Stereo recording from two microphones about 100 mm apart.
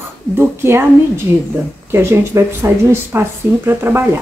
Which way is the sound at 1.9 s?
25° right (ahead or behind).